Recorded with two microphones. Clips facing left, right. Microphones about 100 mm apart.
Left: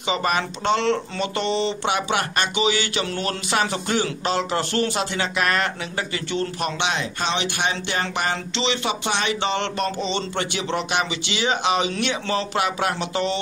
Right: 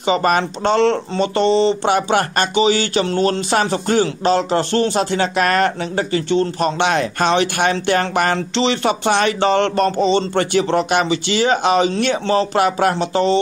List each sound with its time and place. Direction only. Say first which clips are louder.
0.0 s speech: right 7 dB; 40° right (ahead or behind)
6.8 s speech: right 9 dB; 50° right (ahead or behind); by 13.4 s 35° right (ahead or behind)